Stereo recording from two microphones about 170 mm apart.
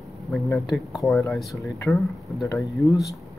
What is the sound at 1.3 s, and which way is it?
Speech, centre (ahead or behind).